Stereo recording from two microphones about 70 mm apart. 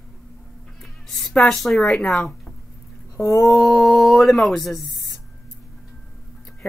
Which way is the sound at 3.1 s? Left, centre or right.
Left.